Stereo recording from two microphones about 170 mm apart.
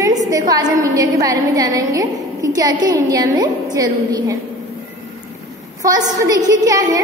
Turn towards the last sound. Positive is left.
turn(degrees=-20)  # may be behind; listen again after turning